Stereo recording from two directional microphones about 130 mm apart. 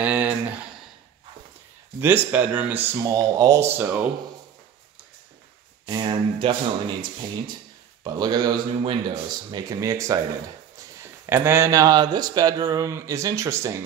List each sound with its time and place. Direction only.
0.0 s speech: 10° right (ahead or behind)
2.0 s speech: 15° right (ahead or behind)
5.9 s speech: 35° right (ahead or behind)